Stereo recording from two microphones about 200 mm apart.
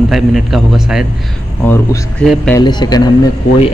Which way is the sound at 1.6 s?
10° left (ahead or behind).